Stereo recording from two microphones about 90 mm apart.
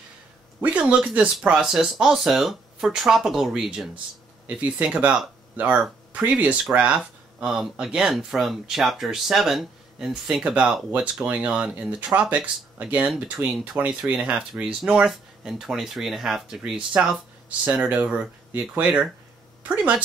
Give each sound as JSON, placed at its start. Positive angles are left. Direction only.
{"t": 0.6, "sound": "speech", "side_deg": -15}
{"t": 4.6, "sound": "speech", "side_deg": -15}
{"t": 7.3, "sound": "a woman's voice", "side_deg": -5}